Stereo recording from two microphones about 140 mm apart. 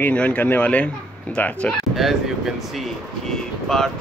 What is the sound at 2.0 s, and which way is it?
Speech, centre (ahead or behind).